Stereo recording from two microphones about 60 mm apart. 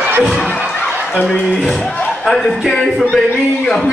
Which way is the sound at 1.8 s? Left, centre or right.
Left.